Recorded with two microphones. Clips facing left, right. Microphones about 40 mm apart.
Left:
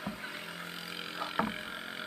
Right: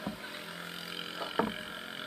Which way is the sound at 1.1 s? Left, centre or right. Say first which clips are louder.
Right 1 dB; left.